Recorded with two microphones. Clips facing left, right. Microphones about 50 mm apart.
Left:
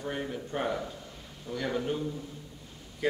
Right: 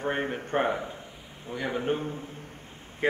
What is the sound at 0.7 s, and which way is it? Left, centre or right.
Speech, right.